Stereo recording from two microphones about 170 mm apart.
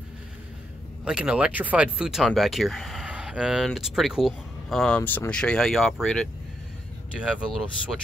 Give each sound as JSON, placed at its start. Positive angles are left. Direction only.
{"t": 1.0, "sound": "speech", "side_deg": -5}